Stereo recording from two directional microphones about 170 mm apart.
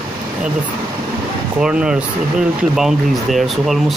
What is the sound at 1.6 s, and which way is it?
Speech, 5° right (ahead or behind).